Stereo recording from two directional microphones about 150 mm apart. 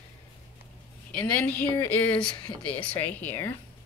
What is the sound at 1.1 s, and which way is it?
Speech, 10° left (ahead or behind).